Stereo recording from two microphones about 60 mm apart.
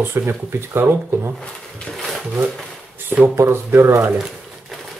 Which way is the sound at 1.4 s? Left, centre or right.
Centre.